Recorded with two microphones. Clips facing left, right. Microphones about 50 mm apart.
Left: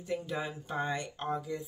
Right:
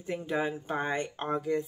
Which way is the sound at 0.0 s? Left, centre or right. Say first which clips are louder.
Right 4 dB; right.